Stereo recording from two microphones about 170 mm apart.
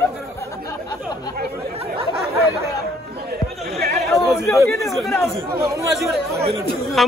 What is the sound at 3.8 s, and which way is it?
Chatter, 70° right (ahead or behind).